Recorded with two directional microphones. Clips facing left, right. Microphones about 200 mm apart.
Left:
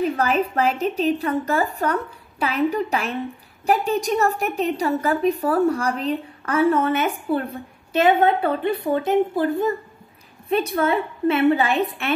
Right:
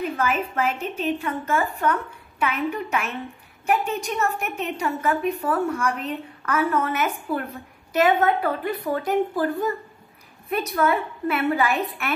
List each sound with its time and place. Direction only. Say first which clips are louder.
0.0 s a woman's voice: left 4 dB; 35° left (ahead or behind)